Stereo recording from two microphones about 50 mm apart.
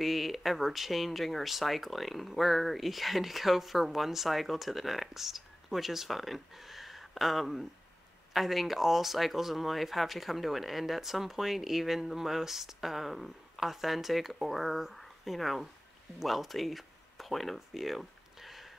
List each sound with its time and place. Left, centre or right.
0.0 s speech: centre